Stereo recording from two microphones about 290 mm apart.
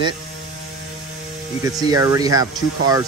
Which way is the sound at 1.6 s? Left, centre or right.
Centre.